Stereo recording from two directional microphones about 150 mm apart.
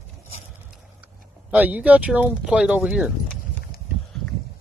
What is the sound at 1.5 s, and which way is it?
Speech, 10° right (ahead or behind).